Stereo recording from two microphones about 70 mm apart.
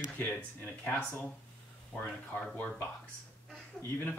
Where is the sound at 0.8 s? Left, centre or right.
Left.